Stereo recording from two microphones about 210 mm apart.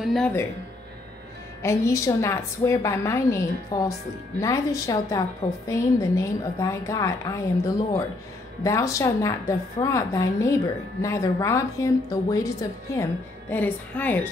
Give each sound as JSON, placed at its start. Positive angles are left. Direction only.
{"t": 0.0, "sound": "speech", "side_deg": 0}
{"t": 1.6, "sound": "a woman's voice", "side_deg": 15}